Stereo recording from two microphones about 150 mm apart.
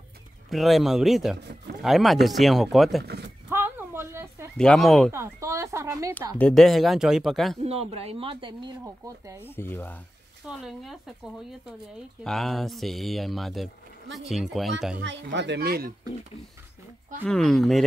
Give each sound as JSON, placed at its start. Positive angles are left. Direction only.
{"t": 0.5, "sound": "speech", "side_deg": 0}
{"t": 3.0, "sound": "speech", "side_deg": -90}
{"t": 3.4, "sound": "a sound", "side_deg": -15}
{"t": 4.6, "sound": "speech", "side_deg": 5}
{"t": 5.1, "sound": "a sound", "side_deg": -20}
{"t": 6.4, "sound": "speech", "side_deg": 0}
{"t": 7.6, "sound": "speech", "side_deg": -40}
{"t": 8.8, "sound": "speech", "side_deg": -20}
{"t": 9.4, "sound": "speech", "side_deg": 15}
{"t": 10.6, "sound": "speech", "side_deg": 0}
{"t": 12.2, "sound": "speech", "side_deg": 0}
{"t": 15.6, "sound": "speech", "side_deg": -90}
{"t": 17.3, "sound": "speech", "side_deg": 5}